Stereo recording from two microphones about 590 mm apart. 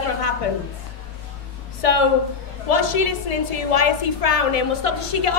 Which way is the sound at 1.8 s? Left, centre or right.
Left.